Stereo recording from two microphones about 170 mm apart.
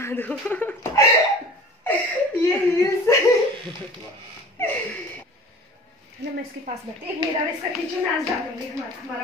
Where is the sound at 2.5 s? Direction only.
15° left (ahead or behind).